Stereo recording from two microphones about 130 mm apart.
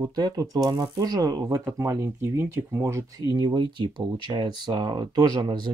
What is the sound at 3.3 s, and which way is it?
Speech, 35° right (ahead or behind).